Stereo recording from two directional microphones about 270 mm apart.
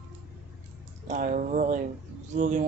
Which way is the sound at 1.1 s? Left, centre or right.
Right.